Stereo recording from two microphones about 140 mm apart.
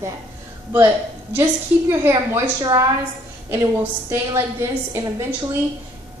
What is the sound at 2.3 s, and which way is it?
Speech, 25° right (ahead or behind).